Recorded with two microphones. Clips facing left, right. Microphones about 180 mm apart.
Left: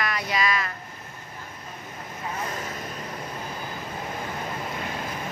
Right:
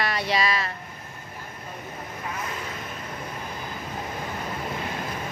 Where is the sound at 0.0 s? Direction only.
30° right (ahead or behind).